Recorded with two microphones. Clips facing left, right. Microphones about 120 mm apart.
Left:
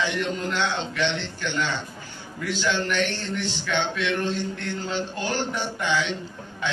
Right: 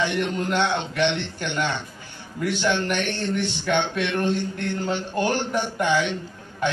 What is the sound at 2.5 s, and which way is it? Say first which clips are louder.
A man's voice: right 1 dB; 60° right (ahead or behind).